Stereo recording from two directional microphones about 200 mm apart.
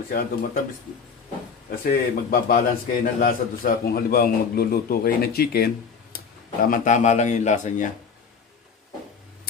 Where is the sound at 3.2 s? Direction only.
45° left (ahead or behind).